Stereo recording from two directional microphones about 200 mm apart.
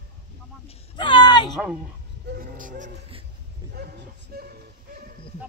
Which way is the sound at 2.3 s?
45° right (ahead or behind).